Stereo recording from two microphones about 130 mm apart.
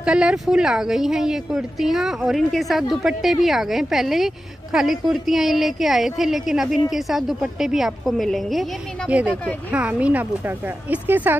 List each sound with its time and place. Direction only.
0.0 s a woman's voice: 5° right (ahead or behind)
9.1 s speech: 10° right (ahead or behind)